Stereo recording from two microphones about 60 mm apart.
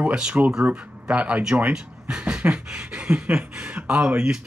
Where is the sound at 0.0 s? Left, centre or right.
Centre.